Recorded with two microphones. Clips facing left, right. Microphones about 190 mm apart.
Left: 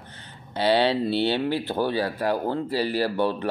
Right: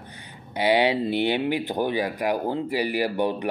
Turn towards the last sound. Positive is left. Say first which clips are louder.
# even
turn(degrees=-15)  # may be behind; listen again after turning